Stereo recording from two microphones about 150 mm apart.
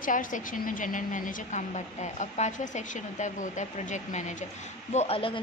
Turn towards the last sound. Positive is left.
turn(degrees=40)  # may be behind; listen again after turning